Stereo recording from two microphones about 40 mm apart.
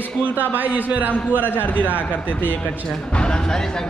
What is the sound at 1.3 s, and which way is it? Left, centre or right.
A man's voice, left.